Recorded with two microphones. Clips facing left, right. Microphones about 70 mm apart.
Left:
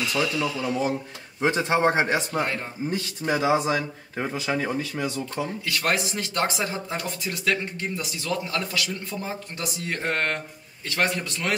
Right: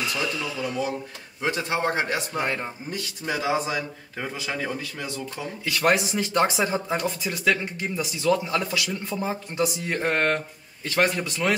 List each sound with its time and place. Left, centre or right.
0.1 s speech: centre
1.4 s speech: left
5.7 s speech: centre